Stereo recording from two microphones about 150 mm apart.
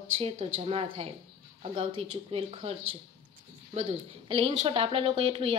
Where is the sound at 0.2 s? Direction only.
40° right (ahead or behind).